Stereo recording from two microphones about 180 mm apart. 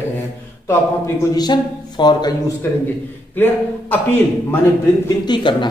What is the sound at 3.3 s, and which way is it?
Speech, 10° left (ahead or behind).